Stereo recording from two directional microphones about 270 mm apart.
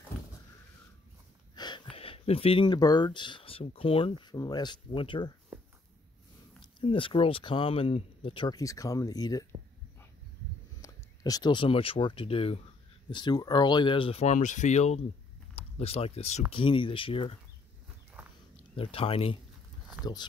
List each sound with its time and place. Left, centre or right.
1.5 s a sound: centre
2.0 s speech: left
6.8 s speech: centre
10.8 s speech: centre
18.8 s speech: centre